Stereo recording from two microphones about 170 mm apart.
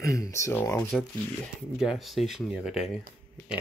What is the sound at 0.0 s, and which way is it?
Speech, 20° left (ahead or behind).